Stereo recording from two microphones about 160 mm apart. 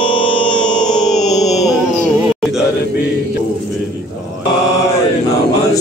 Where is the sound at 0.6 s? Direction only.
5° left (ahead or behind).